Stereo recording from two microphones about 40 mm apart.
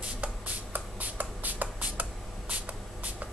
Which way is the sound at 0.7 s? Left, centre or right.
Right.